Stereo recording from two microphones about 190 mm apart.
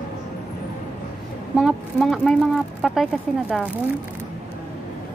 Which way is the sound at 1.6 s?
Centre (ahead or behind).